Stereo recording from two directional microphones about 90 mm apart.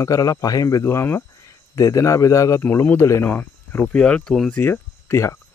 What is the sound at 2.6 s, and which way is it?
Speech, 25° left (ahead or behind).